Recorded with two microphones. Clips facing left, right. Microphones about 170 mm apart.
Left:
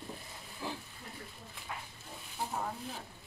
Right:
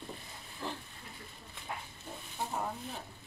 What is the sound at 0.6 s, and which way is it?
Pig, 10° left (ahead or behind).